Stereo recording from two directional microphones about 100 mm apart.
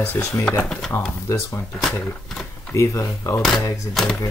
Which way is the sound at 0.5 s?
5° left (ahead or behind).